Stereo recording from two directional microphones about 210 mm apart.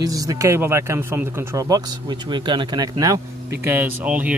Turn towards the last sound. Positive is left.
turn(degrees=-5)  # may be behind; listen again after turning